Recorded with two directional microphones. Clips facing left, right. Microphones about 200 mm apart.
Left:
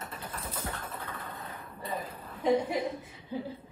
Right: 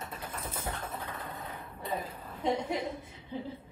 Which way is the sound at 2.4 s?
5° left (ahead or behind).